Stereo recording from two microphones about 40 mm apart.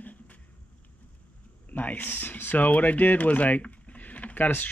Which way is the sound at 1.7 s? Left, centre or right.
Left.